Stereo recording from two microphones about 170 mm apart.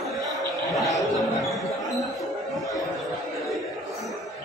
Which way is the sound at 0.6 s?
Centre (ahead or behind).